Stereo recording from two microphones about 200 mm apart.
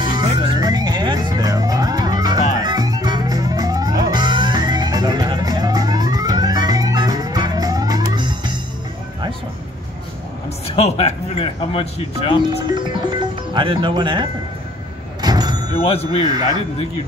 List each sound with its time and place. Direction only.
0.0 s music: 20° right (ahead or behind)
10.8 s speech: 30° left (ahead or behind)
13.6 s speech: 25° right (ahead or behind)
15.2 s vehicle: 20° right (ahead or behind)
15.8 s speech: 30° left (ahead or behind)
16.2 s speech: 20° right (ahead or behind)